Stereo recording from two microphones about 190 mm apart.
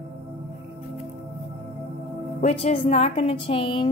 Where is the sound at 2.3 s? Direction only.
35° left (ahead or behind).